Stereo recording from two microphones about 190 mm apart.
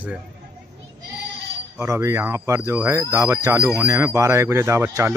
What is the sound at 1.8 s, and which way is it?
Speech, 15° right (ahead or behind).